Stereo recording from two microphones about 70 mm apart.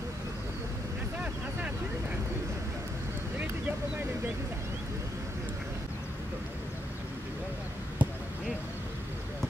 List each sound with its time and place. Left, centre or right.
8.0 s basketball bounce: right